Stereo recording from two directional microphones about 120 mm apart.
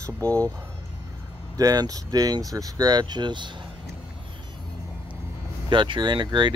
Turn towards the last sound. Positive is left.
turn(degrees=-40)  # may be behind; listen again after turning